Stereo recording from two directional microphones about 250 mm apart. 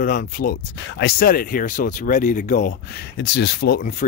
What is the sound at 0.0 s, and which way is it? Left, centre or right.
Speech, left.